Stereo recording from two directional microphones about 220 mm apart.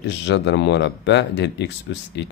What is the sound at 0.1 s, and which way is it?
Speech, 55° left (ahead or behind).